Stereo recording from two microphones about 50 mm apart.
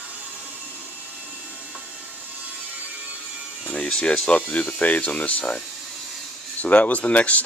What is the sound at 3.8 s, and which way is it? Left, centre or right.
Speech, left.